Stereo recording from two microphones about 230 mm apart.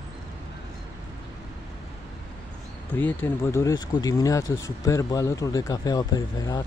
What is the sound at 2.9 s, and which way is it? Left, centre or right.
Speech, centre.